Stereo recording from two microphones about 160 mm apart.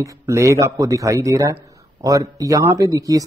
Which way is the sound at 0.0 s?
20° right (ahead or behind).